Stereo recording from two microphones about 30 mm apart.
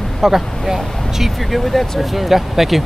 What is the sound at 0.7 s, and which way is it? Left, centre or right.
Speech, centre.